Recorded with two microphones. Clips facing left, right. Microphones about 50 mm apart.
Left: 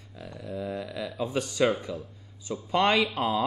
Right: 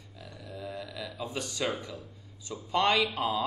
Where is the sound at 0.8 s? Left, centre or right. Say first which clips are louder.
Left 6 dB; left.